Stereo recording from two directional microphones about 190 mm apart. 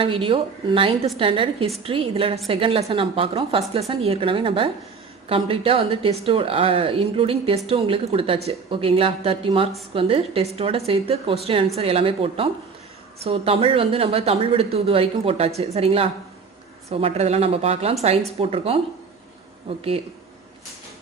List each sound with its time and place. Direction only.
0.0 s a woman's voice: 30° right (ahead or behind)